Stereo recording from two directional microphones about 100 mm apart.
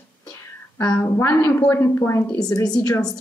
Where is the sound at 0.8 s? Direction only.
20° left (ahead or behind).